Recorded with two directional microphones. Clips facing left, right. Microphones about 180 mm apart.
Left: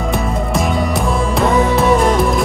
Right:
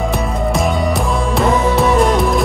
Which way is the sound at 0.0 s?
Centre (ahead or behind).